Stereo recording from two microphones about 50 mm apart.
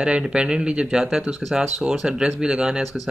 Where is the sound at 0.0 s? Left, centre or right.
Centre.